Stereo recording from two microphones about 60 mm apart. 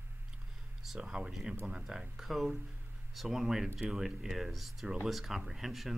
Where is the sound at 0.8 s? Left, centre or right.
Centre.